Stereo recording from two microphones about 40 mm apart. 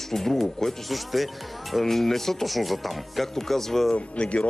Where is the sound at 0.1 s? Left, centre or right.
Centre.